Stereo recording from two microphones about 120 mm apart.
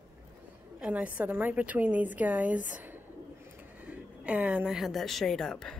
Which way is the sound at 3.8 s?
10° right (ahead or behind).